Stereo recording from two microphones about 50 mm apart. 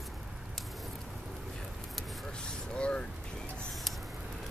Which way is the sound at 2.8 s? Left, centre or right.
Left.